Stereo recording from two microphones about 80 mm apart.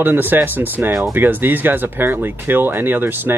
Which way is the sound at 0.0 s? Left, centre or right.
Right.